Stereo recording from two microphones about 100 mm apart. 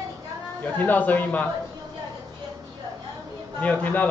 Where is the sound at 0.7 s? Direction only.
15° left (ahead or behind).